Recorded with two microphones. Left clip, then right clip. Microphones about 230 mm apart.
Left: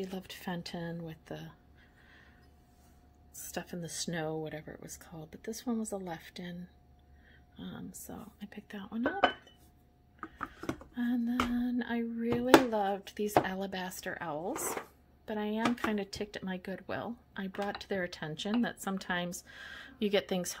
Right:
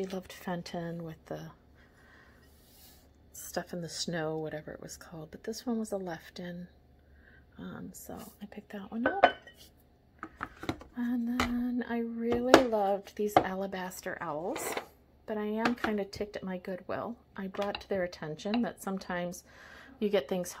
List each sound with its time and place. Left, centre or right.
0.0 s speech: centre
3.5 s speech: centre
11.0 s speech: centre